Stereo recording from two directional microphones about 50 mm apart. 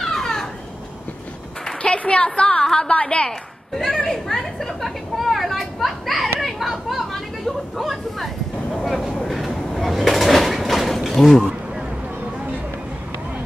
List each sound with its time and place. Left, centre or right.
0.0 s a sound: centre
1.8 s a woman's voice: left
2.6 s a woman's voice: centre
2.9 s a woman's voice: left
3.3 s a woman's voice: centre
9.3 s a sound: centre